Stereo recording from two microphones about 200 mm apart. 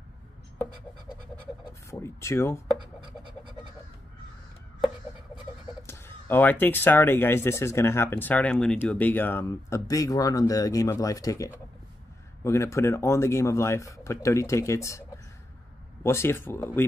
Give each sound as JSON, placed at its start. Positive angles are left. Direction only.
{"t": 1.9, "sound": "speech", "side_deg": 15}
{"t": 2.8, "sound": "writing", "side_deg": -25}
{"t": 5.9, "sound": "speech", "side_deg": 10}